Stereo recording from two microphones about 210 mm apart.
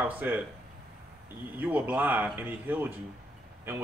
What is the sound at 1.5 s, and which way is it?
A man's voice, 10° right (ahead or behind).